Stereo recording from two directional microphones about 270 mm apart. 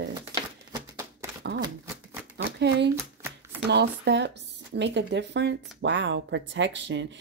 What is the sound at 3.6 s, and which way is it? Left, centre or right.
Speech, right.